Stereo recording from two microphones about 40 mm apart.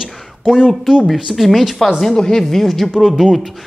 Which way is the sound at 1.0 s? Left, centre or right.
Centre.